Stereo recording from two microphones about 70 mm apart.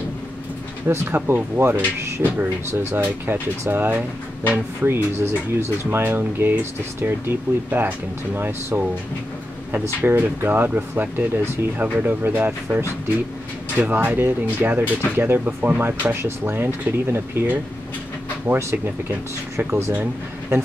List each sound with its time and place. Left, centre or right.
0.8 s speech: right
10.0 s speech: right
13.7 s speech: right
18.6 s speech: right